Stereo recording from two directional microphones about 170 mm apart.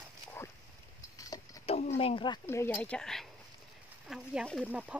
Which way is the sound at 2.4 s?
15° left (ahead or behind).